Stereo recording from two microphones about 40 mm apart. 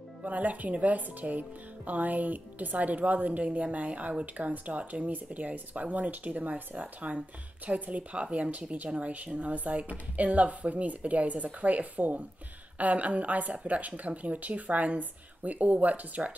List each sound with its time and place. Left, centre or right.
0.2 s speech: right
8.8 s speech: right
9.1 s speech: right